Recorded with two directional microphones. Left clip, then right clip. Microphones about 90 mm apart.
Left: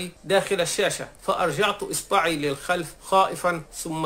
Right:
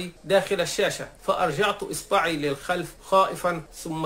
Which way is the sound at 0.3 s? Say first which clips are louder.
Even; 25° left (ahead or behind).